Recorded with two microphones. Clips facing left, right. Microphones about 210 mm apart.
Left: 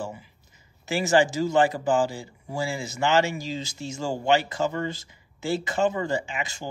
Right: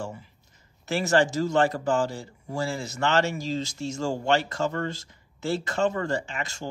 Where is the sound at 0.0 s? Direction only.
5° left (ahead or behind).